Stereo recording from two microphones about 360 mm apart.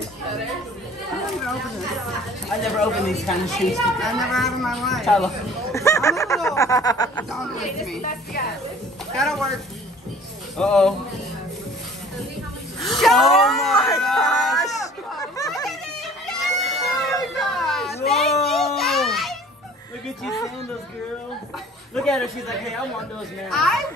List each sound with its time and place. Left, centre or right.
2.6 s a woman's voice: centre
8.0 s a woman's voice: left
9.1 s a man's voice: centre
10.6 s a man's voice: centre
13.0 s speech: centre
15.1 s a sound: centre
16.8 s a sound: centre
17.4 s baby cry: centre
20.2 s a woman's voice: centre
21.9 s a man's voice: centre